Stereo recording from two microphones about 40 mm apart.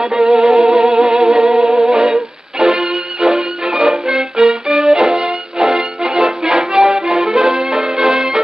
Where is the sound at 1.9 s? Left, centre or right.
Centre.